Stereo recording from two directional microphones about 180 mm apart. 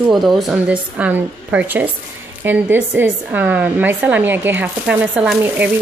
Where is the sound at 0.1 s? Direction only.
Centre (ahead or behind).